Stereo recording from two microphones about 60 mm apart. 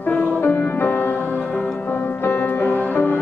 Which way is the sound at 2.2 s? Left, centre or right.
Left.